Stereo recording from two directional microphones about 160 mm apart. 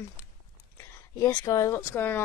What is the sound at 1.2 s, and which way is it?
Speech, 20° left (ahead or behind).